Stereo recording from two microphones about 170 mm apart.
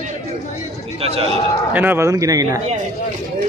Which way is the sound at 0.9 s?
35° right (ahead or behind).